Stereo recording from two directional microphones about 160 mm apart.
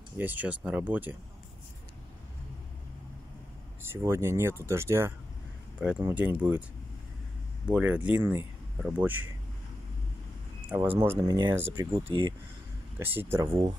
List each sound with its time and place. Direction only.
0.2 s speech: 10° right (ahead or behind)
3.9 s speech: 15° right (ahead or behind)
7.6 s speech: 10° right (ahead or behind)
10.7 s speech: 10° right (ahead or behind)
11.2 s speech: 25° right (ahead or behind)
11.9 s speech: 30° right (ahead or behind)
13.0 s speech: 15° right (ahead or behind)